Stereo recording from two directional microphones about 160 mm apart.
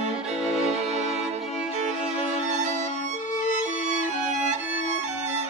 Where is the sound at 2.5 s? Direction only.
50° right (ahead or behind).